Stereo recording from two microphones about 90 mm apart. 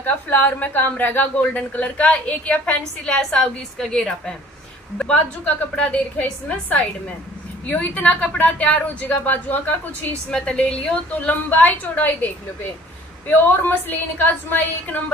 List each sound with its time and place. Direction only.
0.0 s a woman's voice: 20° left (ahead or behind)
13.4 s a woman's voice: 25° left (ahead or behind)